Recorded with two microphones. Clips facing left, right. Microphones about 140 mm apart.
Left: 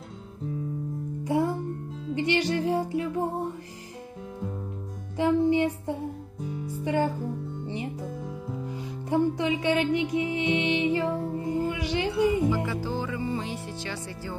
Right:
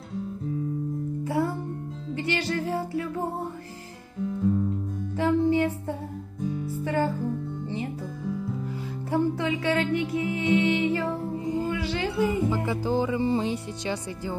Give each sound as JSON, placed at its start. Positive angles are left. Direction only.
{"t": 1.2, "sound": "music", "side_deg": 20}
{"t": 5.1, "sound": "music", "side_deg": 20}
{"t": 9.1, "sound": "music", "side_deg": 20}
{"t": 11.3, "sound": "music", "side_deg": -15}
{"t": 11.7, "sound": "speech", "side_deg": 20}
{"t": 12.4, "sound": "speech", "side_deg": -20}
{"t": 12.8, "sound": "music", "side_deg": -15}
{"t": 13.2, "sound": "speech", "side_deg": -25}